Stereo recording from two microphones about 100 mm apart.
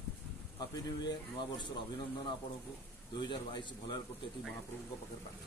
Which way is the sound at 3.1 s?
45° left (ahead or behind).